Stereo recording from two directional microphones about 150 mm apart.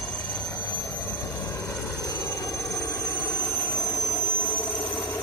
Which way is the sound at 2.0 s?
25° left (ahead or behind).